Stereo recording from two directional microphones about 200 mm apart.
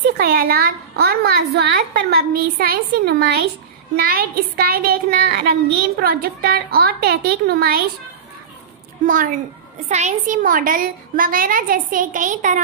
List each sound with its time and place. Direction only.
0.2 s a woman's voice: 50° right (ahead or behind)
9.0 s a woman's voice: 40° right (ahead or behind)